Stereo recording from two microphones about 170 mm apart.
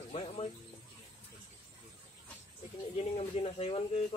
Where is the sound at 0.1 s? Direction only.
40° left (ahead or behind).